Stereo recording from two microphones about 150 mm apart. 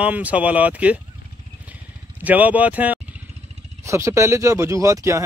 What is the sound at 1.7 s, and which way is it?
Vehicle, 10° right (ahead or behind).